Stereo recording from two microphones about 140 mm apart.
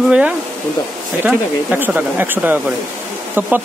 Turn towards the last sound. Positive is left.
turn(degrees=-15)  # may be behind; listen again after turning